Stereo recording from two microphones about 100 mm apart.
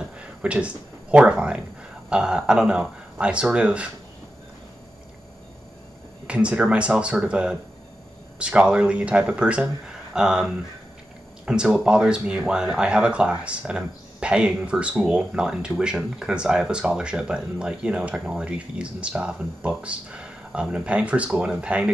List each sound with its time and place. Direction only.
0.2 s speech: 10° right (ahead or behind)
6.2 s speech: 10° right (ahead or behind)